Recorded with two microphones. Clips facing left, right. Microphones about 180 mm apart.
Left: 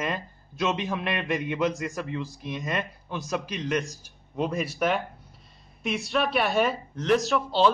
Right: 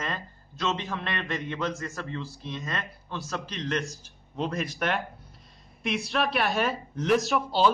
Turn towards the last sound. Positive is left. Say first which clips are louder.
# left 1 dB
turn(degrees=0)  # may be behind; listen again after turning